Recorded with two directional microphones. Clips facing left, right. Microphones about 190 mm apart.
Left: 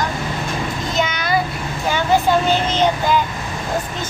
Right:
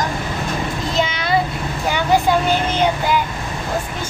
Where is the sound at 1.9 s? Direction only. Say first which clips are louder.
Even; 15° right (ahead or behind).